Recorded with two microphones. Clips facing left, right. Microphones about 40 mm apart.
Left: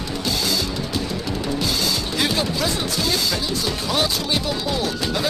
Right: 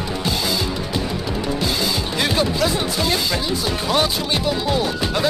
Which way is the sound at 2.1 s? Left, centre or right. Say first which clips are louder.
Right 3 dB; centre.